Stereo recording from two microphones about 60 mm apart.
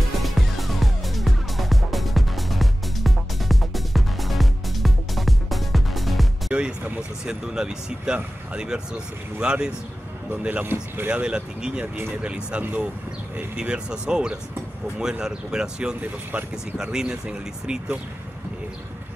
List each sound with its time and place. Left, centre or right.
0.2 s music: centre
6.5 s music: right
7.2 s speech: centre
10.5 s speech: right
11.1 s speech: centre